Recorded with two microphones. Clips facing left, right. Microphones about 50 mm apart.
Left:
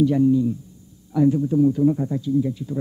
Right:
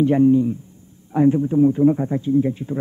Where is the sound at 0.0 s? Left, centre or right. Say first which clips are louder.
Right 3 dB; right.